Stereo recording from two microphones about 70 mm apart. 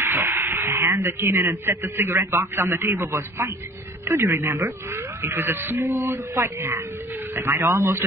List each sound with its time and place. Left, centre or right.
0.0 s a sound: right
1.4 s a man's voice: right
7.6 s speech: right